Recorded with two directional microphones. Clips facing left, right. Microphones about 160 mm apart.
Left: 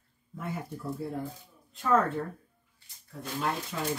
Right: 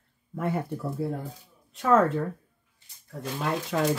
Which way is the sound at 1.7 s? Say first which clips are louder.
Right 5 dB; 90° right.